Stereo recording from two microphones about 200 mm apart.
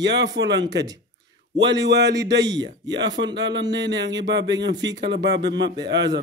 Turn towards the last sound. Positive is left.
turn(degrees=-60)  # may be behind; listen again after turning